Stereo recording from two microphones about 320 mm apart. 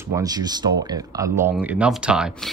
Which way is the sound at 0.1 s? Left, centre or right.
Centre.